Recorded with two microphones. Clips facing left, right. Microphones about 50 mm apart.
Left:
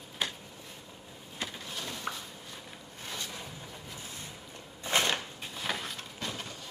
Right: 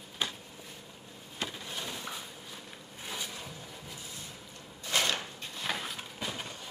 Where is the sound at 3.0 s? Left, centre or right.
Centre.